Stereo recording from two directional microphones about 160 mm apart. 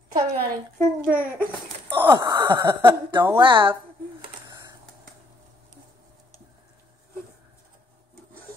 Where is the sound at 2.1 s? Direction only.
25° right (ahead or behind).